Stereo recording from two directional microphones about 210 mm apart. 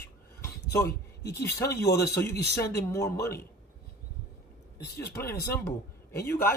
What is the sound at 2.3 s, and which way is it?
Speech, 50° left (ahead or behind).